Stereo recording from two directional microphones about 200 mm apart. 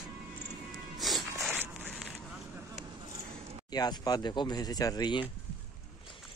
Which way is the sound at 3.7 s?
20° left (ahead or behind).